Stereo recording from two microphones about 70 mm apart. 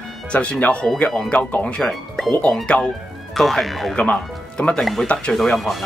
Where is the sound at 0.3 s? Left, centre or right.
Centre.